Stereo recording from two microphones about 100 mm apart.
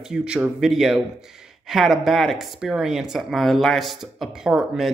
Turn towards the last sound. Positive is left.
turn(degrees=-5)  # may be behind; listen again after turning